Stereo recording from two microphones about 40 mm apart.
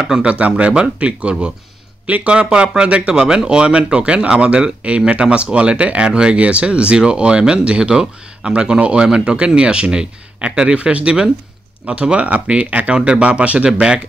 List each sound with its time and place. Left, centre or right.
0.0 s speech: right
7.9 s speech: centre
8.5 s speech: right
13.7 s speech: right